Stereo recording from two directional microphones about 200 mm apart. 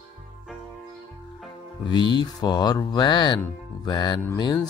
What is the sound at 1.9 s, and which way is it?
Speech, 20° left (ahead or behind).